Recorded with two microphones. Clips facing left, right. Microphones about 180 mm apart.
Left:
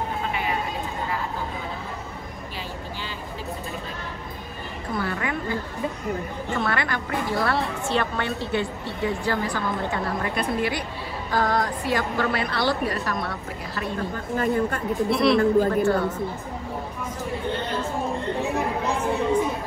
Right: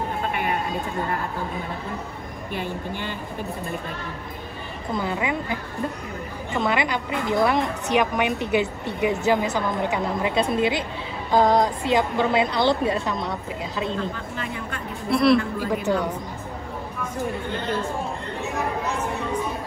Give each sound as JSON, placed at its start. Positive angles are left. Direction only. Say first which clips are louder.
{"t": 0.3, "sound": "sheep", "louder": "right 3 dB", "side_deg": -55}
{"t": 4.9, "sound": "a woman's voice", "louder": "right 2 dB", "side_deg": -20}
{"t": 6.6, "sound": "a woman's voice", "louder": "right 5 dB", "side_deg": -20}
{"t": 14.3, "sound": "speech", "louder": "left 8 dB", "side_deg": 45}
{"t": 15.0, "sound": "speech", "louder": "right 3 dB", "side_deg": 0}
{"t": 15.7, "sound": "speech", "louder": "left 2 dB", "side_deg": -15}